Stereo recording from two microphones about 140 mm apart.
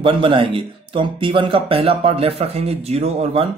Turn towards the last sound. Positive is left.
turn(degrees=-45)  # may be behind; listen again after turning